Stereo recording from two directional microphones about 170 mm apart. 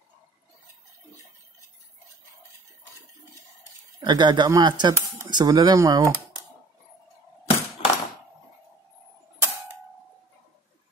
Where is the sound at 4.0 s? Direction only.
25° right (ahead or behind).